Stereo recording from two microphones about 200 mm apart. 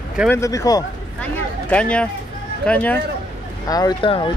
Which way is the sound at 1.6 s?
5° left (ahead or behind).